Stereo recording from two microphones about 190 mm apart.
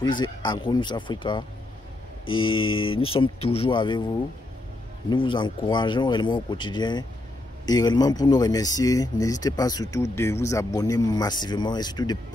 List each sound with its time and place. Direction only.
0.0 s speech: 20° left (ahead or behind)
2.4 s speech: 25° left (ahead or behind)
5.1 s speech: 25° left (ahead or behind)